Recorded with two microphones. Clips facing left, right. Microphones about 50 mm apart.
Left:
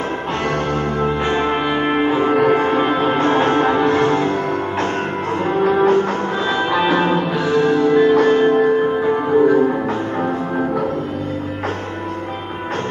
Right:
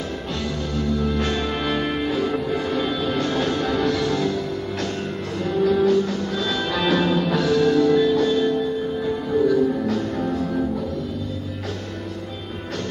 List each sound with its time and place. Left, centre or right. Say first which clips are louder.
0.8 s music: left 4 dB; left
1.2 s music: left 6 dB; left
2.3 s music: left 10 dB; left
2.6 s music: left 7 dB; left
5.4 s music: left 3 dB; left